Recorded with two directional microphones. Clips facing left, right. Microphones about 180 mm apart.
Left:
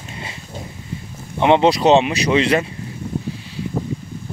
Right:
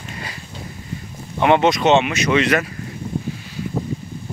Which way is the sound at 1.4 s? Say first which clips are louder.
Left 2 dB; 25° left (ahead or behind).